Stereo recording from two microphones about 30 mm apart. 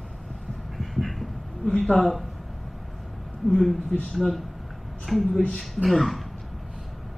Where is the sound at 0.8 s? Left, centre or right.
Centre.